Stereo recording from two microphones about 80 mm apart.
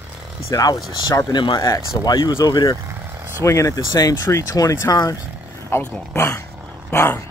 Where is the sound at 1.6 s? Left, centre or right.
Left.